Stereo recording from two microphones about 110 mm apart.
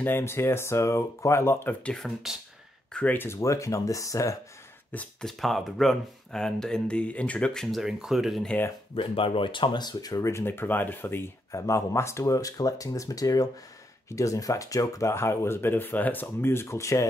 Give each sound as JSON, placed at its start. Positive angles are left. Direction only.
{"t": 0.0, "sound": "speech", "side_deg": 20}
{"t": 4.9, "sound": "speech", "side_deg": 5}
{"t": 8.9, "sound": "speech", "side_deg": 55}